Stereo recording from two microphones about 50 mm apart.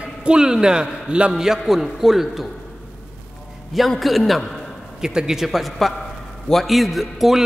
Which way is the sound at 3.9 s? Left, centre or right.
Centre.